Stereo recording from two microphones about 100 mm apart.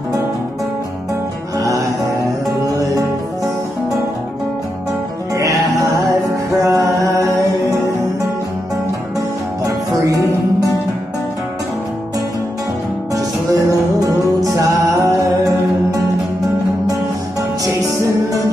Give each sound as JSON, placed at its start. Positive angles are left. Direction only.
{"t": 1.6, "sound": "music", "side_deg": -35}
{"t": 5.3, "sound": "music", "side_deg": -35}
{"t": 9.7, "sound": "music", "side_deg": -35}
{"t": 13.1, "sound": "music", "side_deg": -35}